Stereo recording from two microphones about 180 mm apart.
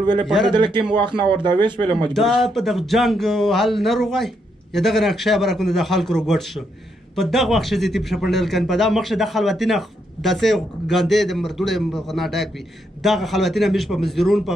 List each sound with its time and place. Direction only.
0.0 s speech: 25° right (ahead or behind)
2.1 s speech: centre (ahead or behind)